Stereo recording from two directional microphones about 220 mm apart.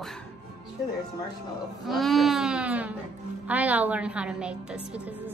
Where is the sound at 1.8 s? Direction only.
Centre (ahead or behind).